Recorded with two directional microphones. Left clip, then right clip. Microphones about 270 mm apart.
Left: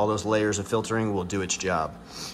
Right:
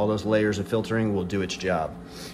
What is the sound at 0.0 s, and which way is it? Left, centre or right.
Speech, centre.